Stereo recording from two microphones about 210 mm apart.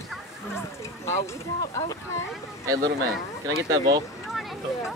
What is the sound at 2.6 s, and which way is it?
Speech, 15° right (ahead or behind).